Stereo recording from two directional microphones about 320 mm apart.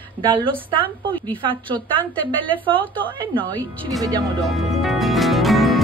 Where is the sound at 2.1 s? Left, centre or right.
Centre.